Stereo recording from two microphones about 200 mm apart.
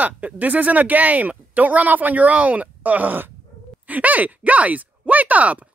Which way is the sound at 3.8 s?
10° right (ahead or behind).